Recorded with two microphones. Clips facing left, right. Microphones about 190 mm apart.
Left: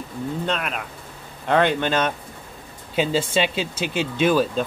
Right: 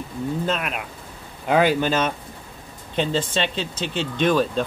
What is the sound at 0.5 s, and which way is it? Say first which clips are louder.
Speech: right 1 dB; 5° right (ahead or behind).